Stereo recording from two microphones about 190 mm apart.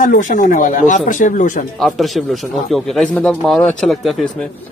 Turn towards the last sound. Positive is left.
turn(degrees=0)  # may be behind; listen again after turning